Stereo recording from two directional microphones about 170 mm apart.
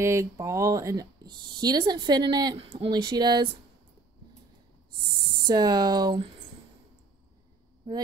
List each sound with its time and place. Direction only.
0.0 s speech: 15° right (ahead or behind)
5.5 s speech: 25° right (ahead or behind)